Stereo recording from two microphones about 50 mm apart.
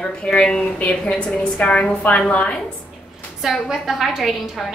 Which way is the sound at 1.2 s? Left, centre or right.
Centre.